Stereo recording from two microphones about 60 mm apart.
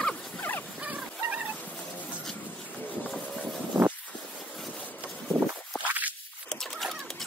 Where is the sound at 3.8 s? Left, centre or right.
Right.